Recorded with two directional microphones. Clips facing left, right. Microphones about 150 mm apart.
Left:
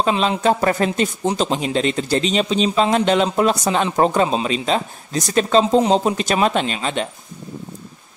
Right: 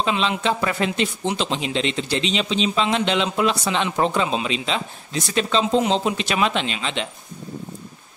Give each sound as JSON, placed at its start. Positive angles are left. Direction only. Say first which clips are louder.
{"t": 0.0, "sound": "speech", "louder": "left 4 dB", "side_deg": 40}